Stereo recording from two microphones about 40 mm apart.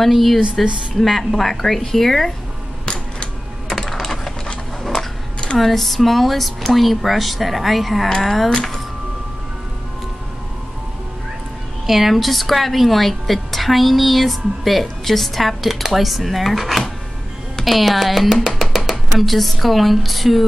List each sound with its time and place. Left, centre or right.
0.0 s a woman's voice: centre
2.8 s a sound: left
3.9 s a sound: centre
5.6 s a woman's voice: centre
11.8 s a woman's voice: centre
18.5 s speech: centre